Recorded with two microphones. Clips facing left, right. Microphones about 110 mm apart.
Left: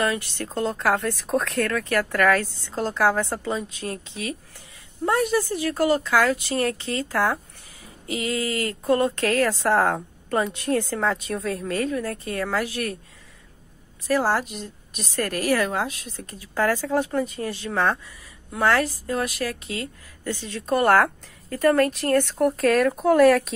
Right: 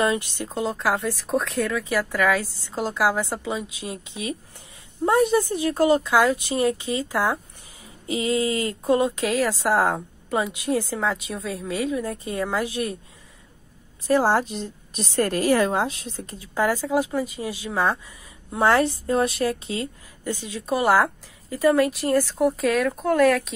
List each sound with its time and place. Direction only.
0.0 s a woman's voice: 20° right (ahead or behind)
0.5 s a woman's voice: 5° right (ahead or behind)
12.0 s a woman's voice: 15° right (ahead or behind)
14.0 s a woman's voice: 25° right (ahead or behind)
16.5 s a woman's voice: 15° right (ahead or behind)
18.5 s a woman's voice: 20° right (ahead or behind)
20.2 s speech: 15° right (ahead or behind); by 23.5 s 5° left (ahead or behind)